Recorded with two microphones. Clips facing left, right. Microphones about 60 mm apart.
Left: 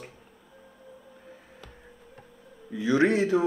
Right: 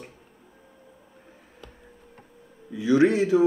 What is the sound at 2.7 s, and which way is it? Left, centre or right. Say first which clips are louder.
Speech: right 3 dB; left.